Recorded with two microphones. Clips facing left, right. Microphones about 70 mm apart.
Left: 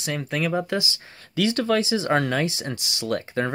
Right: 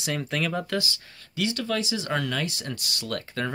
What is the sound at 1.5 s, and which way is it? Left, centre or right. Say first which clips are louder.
Speech: left 8 dB; left.